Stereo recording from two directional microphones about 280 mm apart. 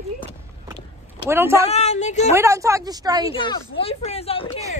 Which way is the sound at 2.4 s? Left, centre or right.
Centre.